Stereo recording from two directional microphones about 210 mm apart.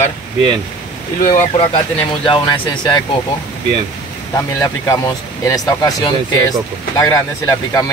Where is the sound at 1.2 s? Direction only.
25° left (ahead or behind).